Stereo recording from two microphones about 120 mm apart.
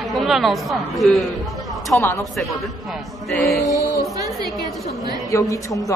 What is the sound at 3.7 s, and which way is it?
Music, 30° right (ahead or behind).